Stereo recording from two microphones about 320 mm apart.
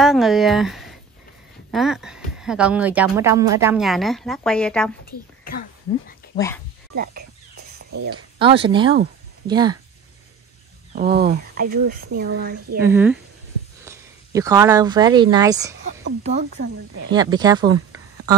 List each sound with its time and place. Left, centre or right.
0.0 s a woman's voice: centre
5.4 s a sound: left
6.3 s speech: centre
8.1 s speech: centre
11.0 s speech: right
12.8 s speech: centre
16.3 s speech: right